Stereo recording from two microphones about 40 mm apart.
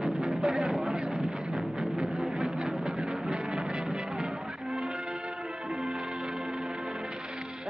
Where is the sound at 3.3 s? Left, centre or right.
Right.